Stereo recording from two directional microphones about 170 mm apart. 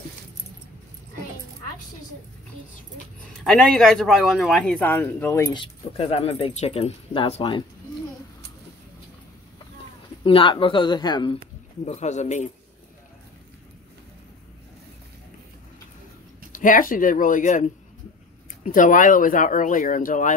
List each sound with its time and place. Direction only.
3.3 s speech: 5° left (ahead or behind)
5.5 s speech: 30° left (ahead or behind)
10.2 s speech: 30° left (ahead or behind)
11.8 s speech: 40° left (ahead or behind)
16.5 s speech: 50° left (ahead or behind)